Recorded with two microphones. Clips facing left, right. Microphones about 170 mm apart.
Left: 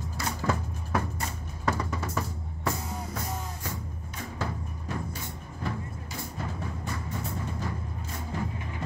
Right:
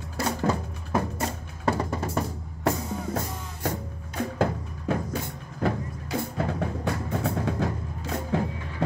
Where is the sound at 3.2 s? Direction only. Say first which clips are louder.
Right 4 dB; 65° right (ahead or behind); by 8.8 s 80° right.